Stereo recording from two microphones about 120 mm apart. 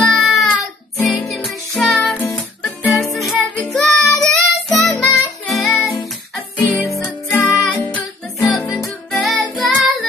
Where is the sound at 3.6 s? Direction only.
Centre (ahead or behind).